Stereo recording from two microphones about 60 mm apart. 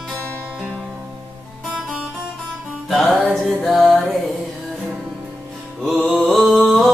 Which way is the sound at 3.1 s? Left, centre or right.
Centre.